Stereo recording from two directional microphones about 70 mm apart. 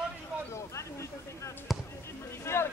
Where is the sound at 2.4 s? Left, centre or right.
Left.